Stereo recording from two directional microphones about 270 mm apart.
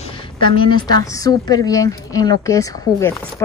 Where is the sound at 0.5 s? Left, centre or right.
Centre.